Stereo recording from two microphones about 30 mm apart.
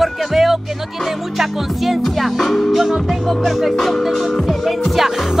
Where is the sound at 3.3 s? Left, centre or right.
Centre.